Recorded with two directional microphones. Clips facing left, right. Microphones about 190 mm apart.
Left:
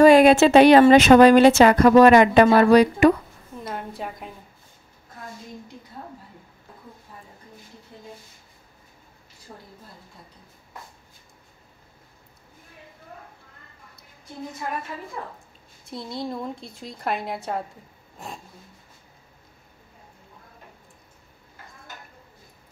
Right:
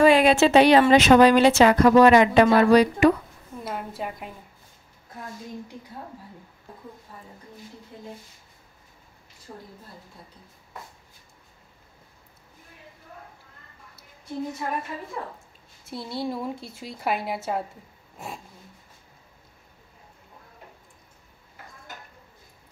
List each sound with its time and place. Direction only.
0.0 s a woman's voice: 45° left (ahead or behind)
3.6 s a woman's voice: 5° right (ahead or behind)
15.8 s a woman's voice: 5° right (ahead or behind)
18.1 s a sound: 5° right (ahead or behind)